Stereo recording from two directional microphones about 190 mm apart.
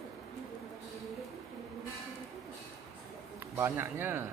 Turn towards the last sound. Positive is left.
turn(degrees=-10)  # may be behind; listen again after turning